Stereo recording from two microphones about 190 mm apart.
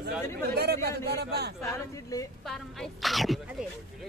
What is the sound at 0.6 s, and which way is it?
Speech, 55° right (ahead or behind).